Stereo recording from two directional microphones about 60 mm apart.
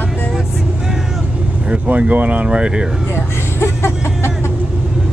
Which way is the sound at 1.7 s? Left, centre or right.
Right.